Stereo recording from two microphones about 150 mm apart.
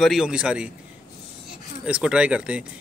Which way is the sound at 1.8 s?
5° right (ahead or behind).